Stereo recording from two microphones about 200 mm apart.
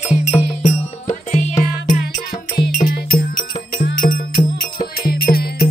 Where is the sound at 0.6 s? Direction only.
40° left (ahead or behind).